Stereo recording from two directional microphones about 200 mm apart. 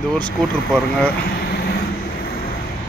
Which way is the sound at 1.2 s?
55° left (ahead or behind).